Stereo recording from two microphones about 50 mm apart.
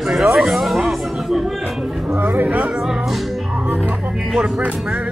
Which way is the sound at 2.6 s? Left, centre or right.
Centre.